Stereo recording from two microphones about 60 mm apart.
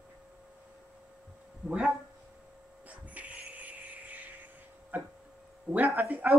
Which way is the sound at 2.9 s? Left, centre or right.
Right.